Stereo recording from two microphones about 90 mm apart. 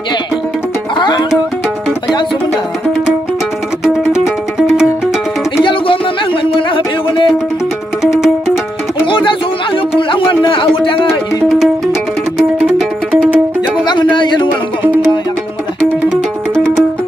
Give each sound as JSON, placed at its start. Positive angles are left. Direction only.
{"t": 0.9, "sound": "music", "side_deg": 55}
{"t": 5.6, "sound": "music", "side_deg": 70}
{"t": 8.0, "sound": "music", "side_deg": 0}
{"t": 9.0, "sound": "a sound", "side_deg": 70}
{"t": 11.4, "sound": "music", "side_deg": -5}